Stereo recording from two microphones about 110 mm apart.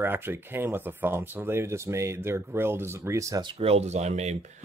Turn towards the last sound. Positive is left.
turn(degrees=-90)